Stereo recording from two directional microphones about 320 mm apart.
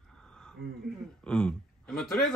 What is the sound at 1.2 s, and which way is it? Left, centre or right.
Speech, centre.